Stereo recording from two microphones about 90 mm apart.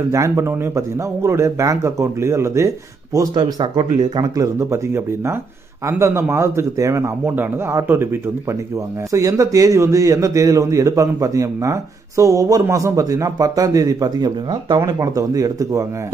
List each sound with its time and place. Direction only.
0.1 s a man's voice: 35° right (ahead or behind)
3.3 s speech: 55° right (ahead or behind)
4.2 s a man's voice: 35° right (ahead or behind)
9.1 s a man's voice: 40° right (ahead or behind)